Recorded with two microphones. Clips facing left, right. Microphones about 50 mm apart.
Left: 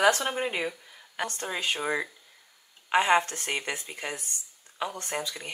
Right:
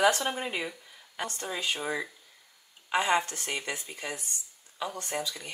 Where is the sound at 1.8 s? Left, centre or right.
Left.